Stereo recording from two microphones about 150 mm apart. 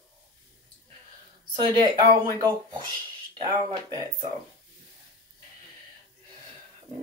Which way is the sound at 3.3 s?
35° right (ahead or behind).